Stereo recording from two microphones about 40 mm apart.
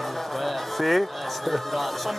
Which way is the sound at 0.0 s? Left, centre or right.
Centre.